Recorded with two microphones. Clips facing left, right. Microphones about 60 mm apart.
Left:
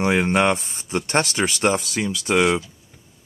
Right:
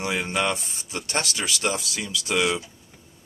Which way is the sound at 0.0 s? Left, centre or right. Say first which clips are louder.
Left 7 dB; left.